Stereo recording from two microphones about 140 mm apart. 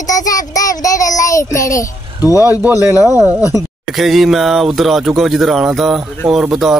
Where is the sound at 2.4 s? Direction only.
10° right (ahead or behind).